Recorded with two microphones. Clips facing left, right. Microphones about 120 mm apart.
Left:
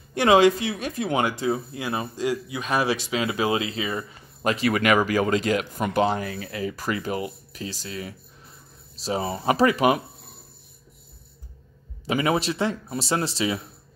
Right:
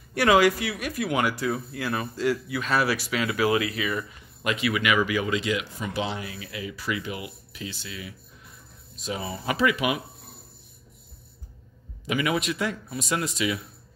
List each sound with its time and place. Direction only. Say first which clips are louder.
0.1 s speech: left 3 dB; 25° left (ahead or behind); by 10.0 s 40° left (ahead or behind)
12.1 s speech: left 3 dB; 35° left (ahead or behind)